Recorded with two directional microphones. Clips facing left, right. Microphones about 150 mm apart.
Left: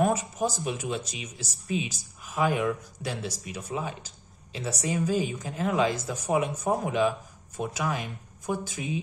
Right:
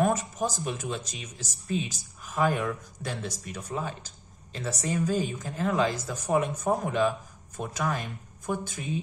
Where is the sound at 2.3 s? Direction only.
15° left (ahead or behind).